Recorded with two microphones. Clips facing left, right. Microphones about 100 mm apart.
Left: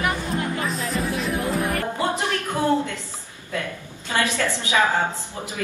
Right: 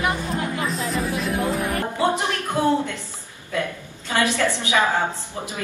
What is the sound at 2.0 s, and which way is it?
Music, 20° right (ahead or behind).